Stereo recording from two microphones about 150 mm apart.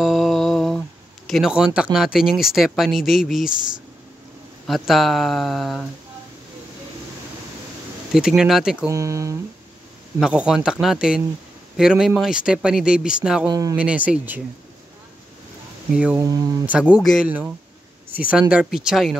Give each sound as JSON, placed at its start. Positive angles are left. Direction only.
{"t": 0.0, "sound": "speech", "side_deg": 0}
{"t": 4.6, "sound": "speech", "side_deg": 0}
{"t": 8.1, "sound": "speech", "side_deg": -5}
{"t": 8.8, "sound": "speech", "side_deg": -20}
{"t": 10.2, "sound": "speech", "side_deg": -5}
{"t": 13.5, "sound": "speech", "side_deg": -25}
{"t": 13.7, "sound": "speech", "side_deg": -10}
{"t": 15.9, "sound": "speech", "side_deg": -5}